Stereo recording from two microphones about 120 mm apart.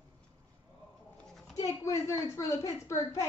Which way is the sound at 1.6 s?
25° left (ahead or behind).